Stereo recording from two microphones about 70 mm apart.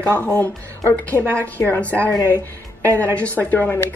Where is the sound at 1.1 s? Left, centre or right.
Right.